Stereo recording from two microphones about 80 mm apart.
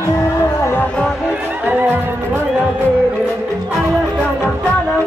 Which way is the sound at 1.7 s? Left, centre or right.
Right.